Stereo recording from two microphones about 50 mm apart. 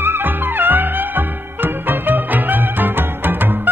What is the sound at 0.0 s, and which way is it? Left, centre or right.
Music, right.